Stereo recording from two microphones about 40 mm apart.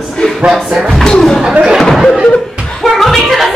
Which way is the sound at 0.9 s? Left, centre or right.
Centre.